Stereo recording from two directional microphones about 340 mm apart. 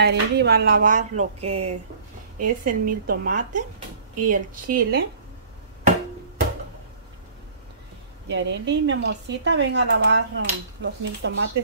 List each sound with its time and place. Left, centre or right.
0.0 s speech: right
8.3 s speech: right